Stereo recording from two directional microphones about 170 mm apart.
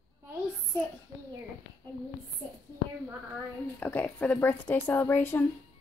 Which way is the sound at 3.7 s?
10° left (ahead or behind).